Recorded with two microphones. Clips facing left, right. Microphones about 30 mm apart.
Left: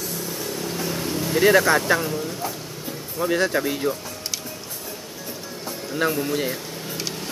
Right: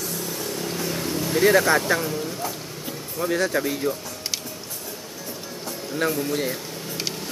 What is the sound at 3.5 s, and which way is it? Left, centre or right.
Speech, centre.